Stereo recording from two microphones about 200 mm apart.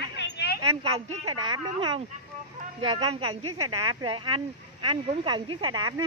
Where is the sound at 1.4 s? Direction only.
25° right (ahead or behind).